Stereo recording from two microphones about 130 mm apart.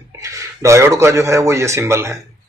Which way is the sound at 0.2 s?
25° right (ahead or behind).